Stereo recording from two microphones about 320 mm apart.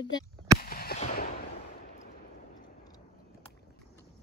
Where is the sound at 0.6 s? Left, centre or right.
Left.